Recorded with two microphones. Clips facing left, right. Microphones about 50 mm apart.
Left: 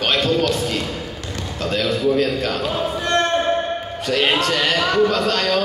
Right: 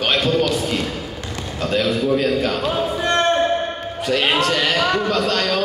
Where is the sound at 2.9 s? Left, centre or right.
Right.